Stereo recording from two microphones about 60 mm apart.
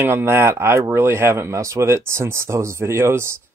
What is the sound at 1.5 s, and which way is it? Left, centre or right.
Speech, right.